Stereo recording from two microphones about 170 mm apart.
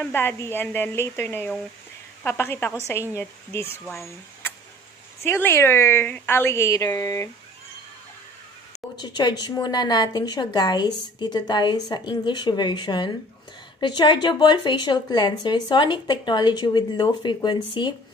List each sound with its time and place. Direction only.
0.0 s a woman's voice: 10° left (ahead or behind)
8.9 s a woman's voice: 25° left (ahead or behind)